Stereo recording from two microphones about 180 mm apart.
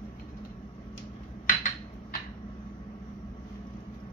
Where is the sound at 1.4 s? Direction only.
50° left (ahead or behind).